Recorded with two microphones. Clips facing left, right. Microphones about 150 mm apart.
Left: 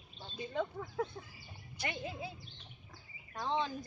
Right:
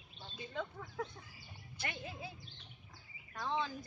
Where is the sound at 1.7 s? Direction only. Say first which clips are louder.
Left 4 dB; 15° left (ahead or behind).